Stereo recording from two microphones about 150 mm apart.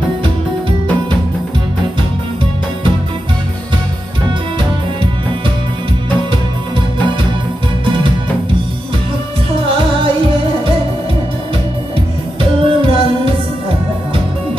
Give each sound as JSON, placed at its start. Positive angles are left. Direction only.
{"t": 9.7, "sound": "music", "side_deg": -35}
{"t": 12.4, "sound": "music", "side_deg": -35}